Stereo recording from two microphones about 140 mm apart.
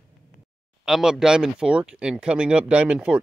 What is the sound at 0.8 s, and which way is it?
Speech, 5° right (ahead or behind).